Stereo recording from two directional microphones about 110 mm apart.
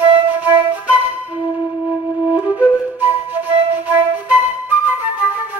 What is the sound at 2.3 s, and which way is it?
Flute, 15° right (ahead or behind).